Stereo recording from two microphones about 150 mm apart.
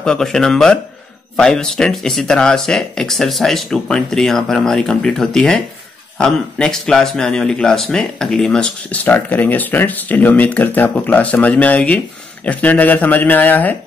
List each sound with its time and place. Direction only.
0.0 s speech: 5° left (ahead or behind)